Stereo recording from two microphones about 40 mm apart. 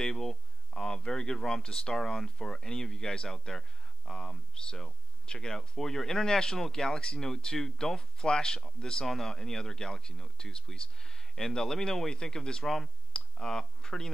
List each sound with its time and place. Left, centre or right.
0.0 s speech: centre
4.6 s speech: centre
12.6 s speech: centre
13.1 s speech: centre